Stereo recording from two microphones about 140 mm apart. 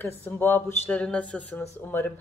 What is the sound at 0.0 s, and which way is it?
Speech, 15° left (ahead or behind).